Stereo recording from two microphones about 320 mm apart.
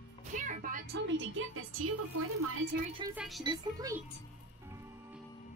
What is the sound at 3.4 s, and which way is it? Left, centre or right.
Speech, centre.